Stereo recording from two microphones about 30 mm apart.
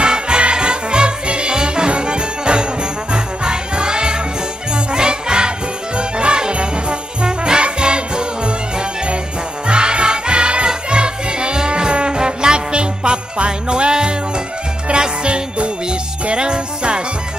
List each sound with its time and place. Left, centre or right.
0.0 s music: right
14.9 s jingle bell: right